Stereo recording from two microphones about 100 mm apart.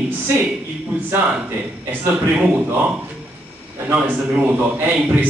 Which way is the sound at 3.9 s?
15° right (ahead or behind).